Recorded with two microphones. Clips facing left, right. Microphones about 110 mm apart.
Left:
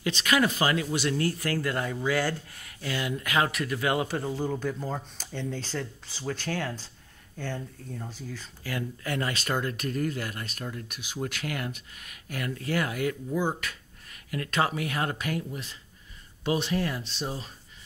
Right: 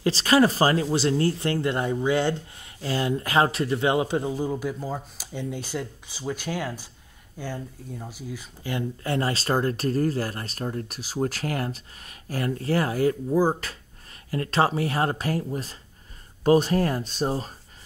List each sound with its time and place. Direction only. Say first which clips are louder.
0.0 s speech: right 6 dB; 35° right (ahead or behind); by 8.5 s 10° right (ahead or behind)
8.6 s speech: right 4 dB; 25° right (ahead or behind)